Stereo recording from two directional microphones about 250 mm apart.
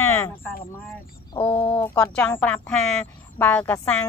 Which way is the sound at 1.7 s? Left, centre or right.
Centre.